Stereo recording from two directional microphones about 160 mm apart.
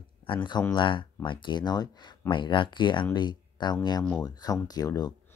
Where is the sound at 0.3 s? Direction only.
30° left (ahead or behind).